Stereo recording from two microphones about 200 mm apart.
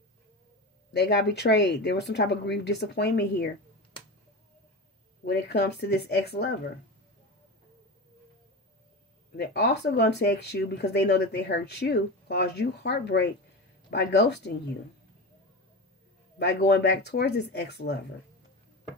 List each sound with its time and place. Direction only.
0.9 s speech: 60° left (ahead or behind)
5.2 s speech: 55° left (ahead or behind)
9.3 s speech: 55° left (ahead or behind)
16.3 s speech: 55° left (ahead or behind)